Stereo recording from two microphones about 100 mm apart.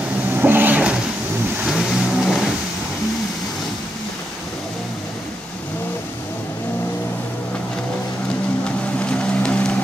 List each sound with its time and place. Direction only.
0.3 s vehicle: 20° right (ahead or behind)
1.7 s vehicle: 5° right (ahead or behind)
9.0 s vehicle: 10° left (ahead or behind)